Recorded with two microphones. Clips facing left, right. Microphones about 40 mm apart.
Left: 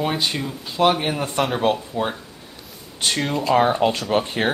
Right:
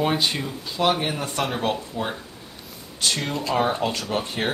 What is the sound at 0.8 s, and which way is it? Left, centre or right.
Speech, centre.